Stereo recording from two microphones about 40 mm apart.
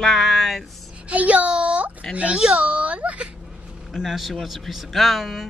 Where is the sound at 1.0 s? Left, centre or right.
Right.